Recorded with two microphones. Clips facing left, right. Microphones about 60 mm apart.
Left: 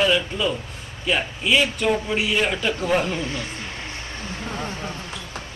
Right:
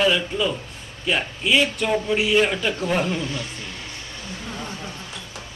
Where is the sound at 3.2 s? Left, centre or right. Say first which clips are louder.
Left 1 dB; left.